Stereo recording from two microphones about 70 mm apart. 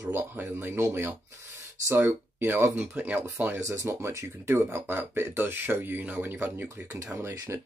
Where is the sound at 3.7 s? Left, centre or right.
Right.